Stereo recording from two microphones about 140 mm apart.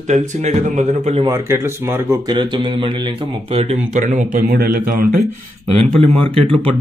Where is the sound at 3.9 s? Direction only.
65° right (ahead or behind); by 5.2 s 90° right.